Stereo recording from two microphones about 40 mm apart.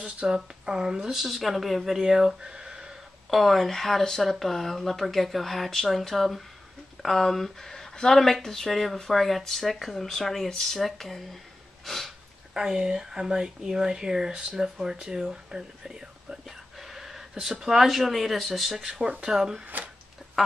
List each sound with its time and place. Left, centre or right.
0.0 s speech: centre
1.1 s speech: centre
2.4 s a sound: centre
3.3 s speech: centre
11.8 s a sound: centre
12.5 s speech: centre
19.3 s speech: centre